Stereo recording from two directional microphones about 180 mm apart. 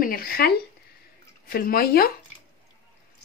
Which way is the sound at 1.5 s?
55° left (ahead or behind).